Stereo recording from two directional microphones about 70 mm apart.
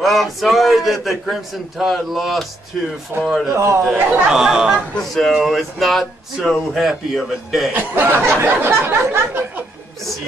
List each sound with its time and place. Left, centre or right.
0.0 s speech: centre
3.1 s a man's voice: right
3.9 s speech: right
4.3 s a sound: centre
4.9 s speech: centre
7.7 s speech: right